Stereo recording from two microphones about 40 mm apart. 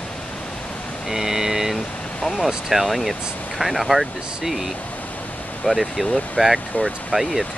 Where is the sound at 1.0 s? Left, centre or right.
Centre.